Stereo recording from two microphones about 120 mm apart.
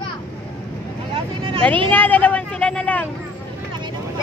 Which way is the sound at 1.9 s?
15° left (ahead or behind).